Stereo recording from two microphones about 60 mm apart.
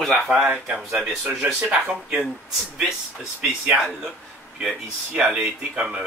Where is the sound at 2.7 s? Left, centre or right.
Centre.